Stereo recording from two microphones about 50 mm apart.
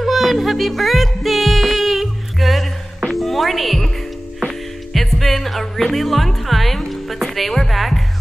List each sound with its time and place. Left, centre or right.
0.0 s music: centre